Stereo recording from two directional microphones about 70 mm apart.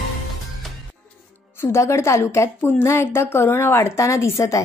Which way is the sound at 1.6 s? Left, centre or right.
Left.